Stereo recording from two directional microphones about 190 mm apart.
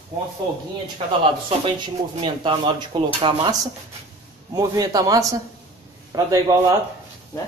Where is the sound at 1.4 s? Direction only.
25° right (ahead or behind).